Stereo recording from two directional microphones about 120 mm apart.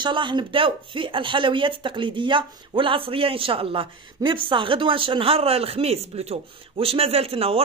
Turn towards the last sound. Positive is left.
turn(degrees=-55)  # may be behind; listen again after turning